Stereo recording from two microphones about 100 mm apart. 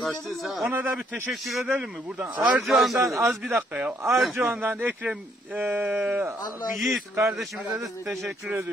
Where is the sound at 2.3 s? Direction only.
15° right (ahead or behind).